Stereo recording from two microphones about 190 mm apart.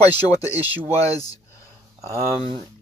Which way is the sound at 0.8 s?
15° left (ahead or behind).